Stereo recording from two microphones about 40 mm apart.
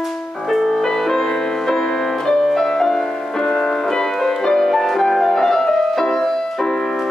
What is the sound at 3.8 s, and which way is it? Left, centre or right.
Music, centre.